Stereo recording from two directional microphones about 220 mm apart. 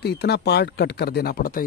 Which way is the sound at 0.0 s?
50° left (ahead or behind).